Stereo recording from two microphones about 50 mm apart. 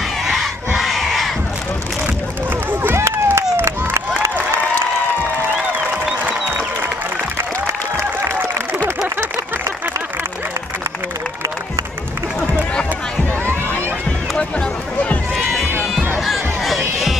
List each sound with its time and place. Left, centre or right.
0.7 s crowd: centre
2.7 s run: right
3.0 s run: right
16.3 s music: centre